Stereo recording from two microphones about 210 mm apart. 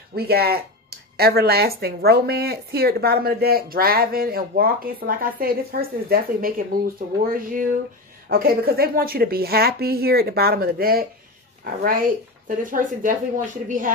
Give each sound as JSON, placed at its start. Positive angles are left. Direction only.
{"t": 0.1, "sound": "speech", "side_deg": -45}